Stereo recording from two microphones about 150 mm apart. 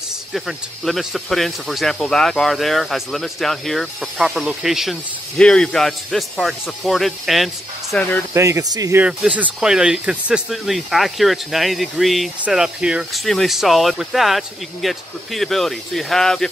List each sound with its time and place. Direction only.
0.3 s speech: centre (ahead or behind)
8.3 s speech: 20° right (ahead or behind)
9.0 s speech: 10° right (ahead or behind)